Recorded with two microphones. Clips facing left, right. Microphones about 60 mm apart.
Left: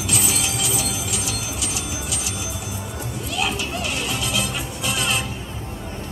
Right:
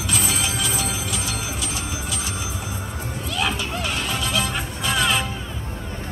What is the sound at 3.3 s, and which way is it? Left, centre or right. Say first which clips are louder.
Music: even; right.